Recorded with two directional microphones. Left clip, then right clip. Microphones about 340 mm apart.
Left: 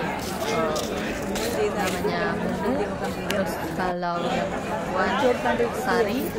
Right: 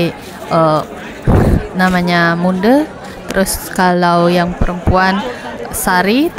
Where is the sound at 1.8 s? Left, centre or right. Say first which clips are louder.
Right 12 dB; right.